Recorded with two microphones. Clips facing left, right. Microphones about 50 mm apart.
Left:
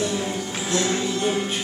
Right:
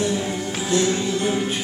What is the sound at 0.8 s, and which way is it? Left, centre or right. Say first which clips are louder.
Music: right 2 dB; centre.